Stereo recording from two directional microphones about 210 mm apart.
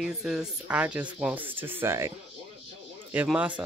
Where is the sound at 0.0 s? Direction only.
5° right (ahead or behind).